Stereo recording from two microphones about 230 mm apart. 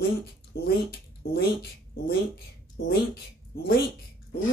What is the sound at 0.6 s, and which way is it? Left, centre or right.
Speech, left.